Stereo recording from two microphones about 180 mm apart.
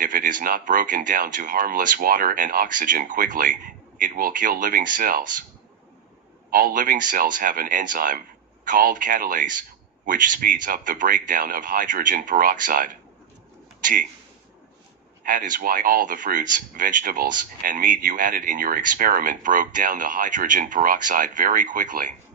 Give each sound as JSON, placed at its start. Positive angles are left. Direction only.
{"t": 0.0, "sound": "speech", "side_deg": -45}
{"t": 6.5, "sound": "speech", "side_deg": -50}
{"t": 15.2, "sound": "speech", "side_deg": -50}